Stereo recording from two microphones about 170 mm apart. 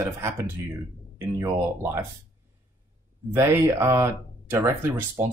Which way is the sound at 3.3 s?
15° right (ahead or behind).